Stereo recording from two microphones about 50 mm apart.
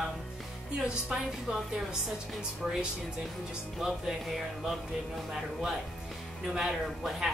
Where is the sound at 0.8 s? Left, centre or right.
Centre.